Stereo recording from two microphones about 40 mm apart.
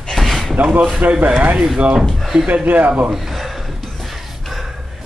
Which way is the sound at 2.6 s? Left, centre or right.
Right.